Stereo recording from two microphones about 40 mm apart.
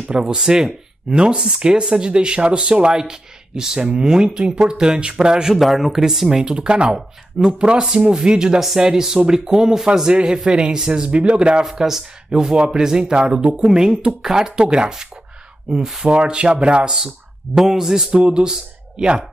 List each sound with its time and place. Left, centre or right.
0.3 s speech: centre
1.1 s speech: right
5.6 s speech: centre
6.4 s speech: right
11.8 s speech: centre
16.1 s speech: right